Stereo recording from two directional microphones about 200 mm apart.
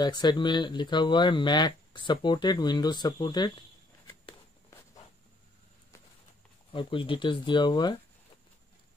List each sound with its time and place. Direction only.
0.0 s speech: 20° left (ahead or behind)
4.1 s walk: 20° left (ahead or behind)
6.7 s speech: 25° left (ahead or behind)